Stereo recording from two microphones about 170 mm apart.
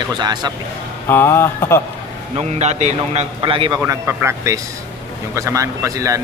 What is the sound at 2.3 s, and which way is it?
A man's voice, 40° right (ahead or behind).